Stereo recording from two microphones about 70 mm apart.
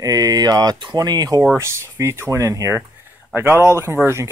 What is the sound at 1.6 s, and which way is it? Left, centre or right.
Speech, right.